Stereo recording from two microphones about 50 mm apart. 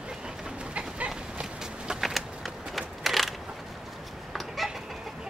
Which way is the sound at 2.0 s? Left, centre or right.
Centre.